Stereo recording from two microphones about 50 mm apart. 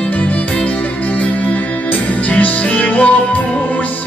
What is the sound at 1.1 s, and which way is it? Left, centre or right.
Music, left.